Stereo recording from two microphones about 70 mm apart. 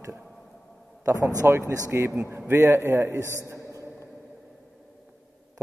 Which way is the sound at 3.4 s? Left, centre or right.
Right.